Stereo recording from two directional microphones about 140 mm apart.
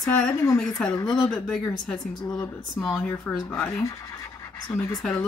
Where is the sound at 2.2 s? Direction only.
30° left (ahead or behind).